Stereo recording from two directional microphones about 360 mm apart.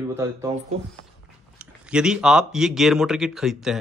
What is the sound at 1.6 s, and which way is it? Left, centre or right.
Speech, centre.